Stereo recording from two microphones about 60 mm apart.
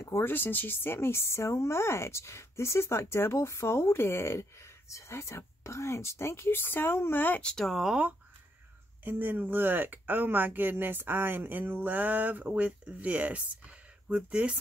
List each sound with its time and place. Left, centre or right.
0.0 s speech: left
0.3 s speech: left
7.4 s speech: centre
7.7 s speech: centre
9.0 s speech: right